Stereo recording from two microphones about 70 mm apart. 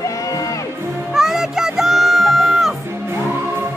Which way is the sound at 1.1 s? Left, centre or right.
Centre.